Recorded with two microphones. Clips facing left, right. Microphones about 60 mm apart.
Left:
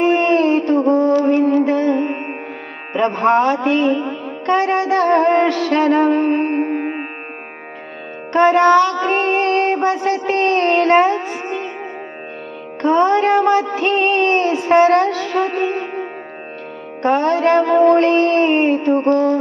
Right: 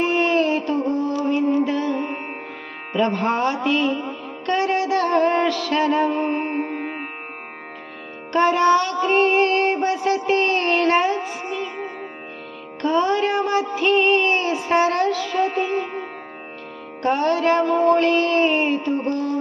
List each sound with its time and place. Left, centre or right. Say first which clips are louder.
0.0 s music: left 5 dB; left
1.6 s music: left 6 dB; left
4.5 s mantra: left 4 dB; left
8.3 s music: left 5 dB; left
8.7 s music: left 6 dB; left
9.1 s a sound: left 1 dB; left
12.8 s mantra: left 6 dB; left
15.3 s music: left 3 dB; left
15.6 s music: left 3 dB; left
17.0 s mantra: left 4 dB; left
17.6 s music: left 7 dB; left
17.9 s mantra: left 5 dB; left